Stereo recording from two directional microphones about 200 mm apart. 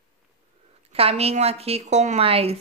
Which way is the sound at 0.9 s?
30° right (ahead or behind).